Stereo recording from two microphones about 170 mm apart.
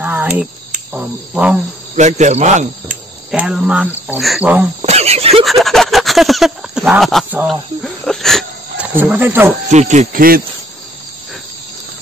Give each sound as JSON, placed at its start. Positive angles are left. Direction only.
{"t": 0.0, "sound": "a sound", "side_deg": -10}
{"t": 0.9, "sound": "speech", "side_deg": -5}
{"t": 2.0, "sound": "speech", "side_deg": -45}
{"t": 3.3, "sound": "speech", "side_deg": -5}
{"t": 4.8, "sound": "a sound", "side_deg": -40}
{"t": 5.4, "sound": "speech", "side_deg": 0}
{"t": 8.9, "sound": "speech", "side_deg": -10}
{"t": 9.7, "sound": "speech", "side_deg": -45}